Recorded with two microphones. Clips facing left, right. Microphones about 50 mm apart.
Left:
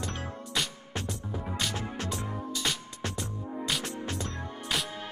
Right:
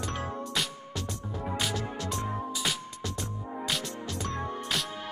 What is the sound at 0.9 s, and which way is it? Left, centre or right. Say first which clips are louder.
Music: left 2 dB; left.